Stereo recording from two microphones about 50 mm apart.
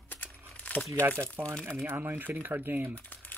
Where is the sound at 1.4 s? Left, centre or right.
Right.